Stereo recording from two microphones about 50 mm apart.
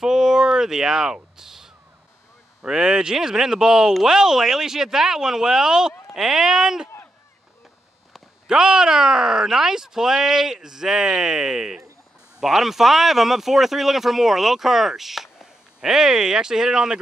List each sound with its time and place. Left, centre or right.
0.0 s a sound: centre
2.6 s speech: centre
8.5 s speech: centre